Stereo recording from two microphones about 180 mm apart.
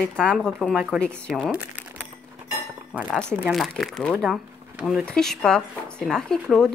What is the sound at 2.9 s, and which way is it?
Speech, centre (ahead or behind).